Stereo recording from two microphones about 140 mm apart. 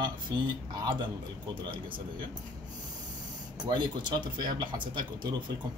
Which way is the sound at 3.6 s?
30° right (ahead or behind).